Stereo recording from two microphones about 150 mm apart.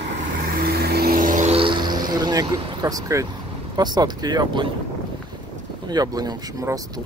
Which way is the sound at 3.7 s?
25° right (ahead or behind).